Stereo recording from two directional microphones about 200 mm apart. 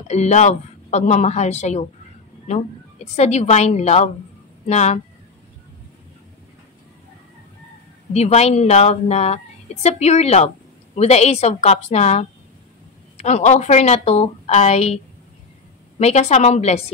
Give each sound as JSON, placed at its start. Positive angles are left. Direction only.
{"t": 0.1, "sound": "a woman's voice", "side_deg": 35}
{"t": 3.2, "sound": "a woman's voice", "side_deg": 35}
{"t": 8.1, "sound": "a woman's voice", "side_deg": 35}
{"t": 16.0, "sound": "a woman's voice", "side_deg": 35}